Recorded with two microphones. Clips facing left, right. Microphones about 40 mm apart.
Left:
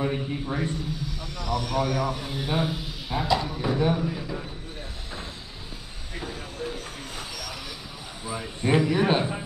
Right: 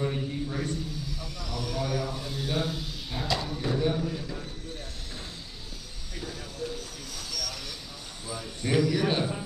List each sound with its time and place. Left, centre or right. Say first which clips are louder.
0.0 s speech: left 3 dB; left
1.2 s speech: left 8 dB; centre
2.0 s speech: left 4 dB; left
6.1 s vehicle: left 3 dB; left
8.3 s speech: left 5 dB; left